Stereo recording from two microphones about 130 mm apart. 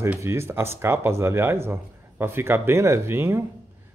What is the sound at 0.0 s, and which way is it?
A man's voice, 20° right (ahead or behind).